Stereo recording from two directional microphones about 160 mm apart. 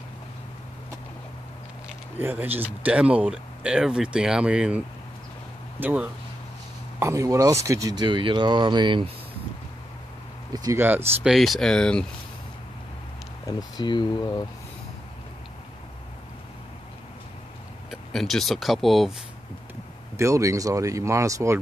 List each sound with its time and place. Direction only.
1.9 s speech: 10° right (ahead or behind); by 9.1 s 30° right (ahead or behind)
10.5 s speech: 25° right (ahead or behind)
10.8 s speech: 10° right (ahead or behind)
11.3 s speech: centre (ahead or behind)
13.5 s speech: 25° left (ahead or behind)
18.1 s speech: centre (ahead or behind)
20.2 s speech: 20° right (ahead or behind)